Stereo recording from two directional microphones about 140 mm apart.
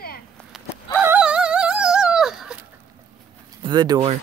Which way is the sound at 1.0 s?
10° right (ahead or behind).